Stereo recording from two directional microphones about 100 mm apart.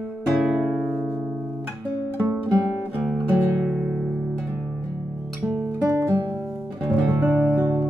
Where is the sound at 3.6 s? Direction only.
5° right (ahead or behind).